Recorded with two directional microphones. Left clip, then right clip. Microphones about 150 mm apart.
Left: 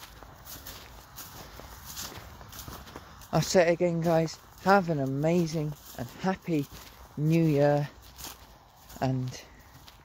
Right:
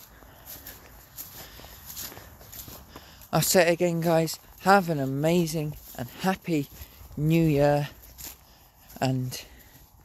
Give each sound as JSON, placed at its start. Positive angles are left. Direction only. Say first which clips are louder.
{"t": 3.3, "sound": "speech", "louder": "right 2 dB", "side_deg": -30}
{"t": 9.0, "sound": "speech", "louder": "right 3 dB", "side_deg": -30}